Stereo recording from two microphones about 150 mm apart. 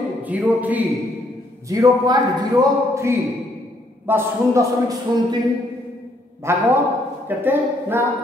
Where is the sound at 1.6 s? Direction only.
25° right (ahead or behind).